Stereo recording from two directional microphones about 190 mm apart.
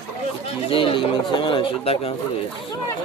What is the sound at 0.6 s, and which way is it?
Speech, 30° left (ahead or behind).